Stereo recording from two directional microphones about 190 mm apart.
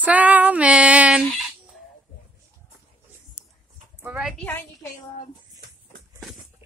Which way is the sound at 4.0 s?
10° right (ahead or behind).